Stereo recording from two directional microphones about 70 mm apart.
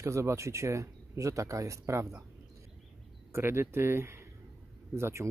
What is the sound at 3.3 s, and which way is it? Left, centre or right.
Speech, right.